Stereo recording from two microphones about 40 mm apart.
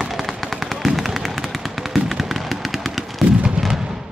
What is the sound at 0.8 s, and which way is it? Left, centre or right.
Gunshot, centre.